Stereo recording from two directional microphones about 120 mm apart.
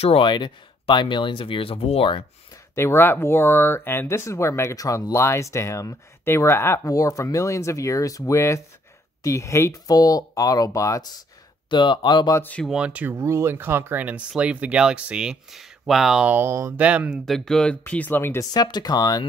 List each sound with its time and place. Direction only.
0.0 s speech: 50° left (ahead or behind)
2.7 s speech: 20° left (ahead or behind)
11.7 s speech: 40° left (ahead or behind)
12.4 s speech: 15° left (ahead or behind)
12.6 s speech: 10° right (ahead or behind)
16.8 s speech: 10° right (ahead or behind)
17.3 s speech: 5° left (ahead or behind)
18.5 s speech: 35° left (ahead or behind)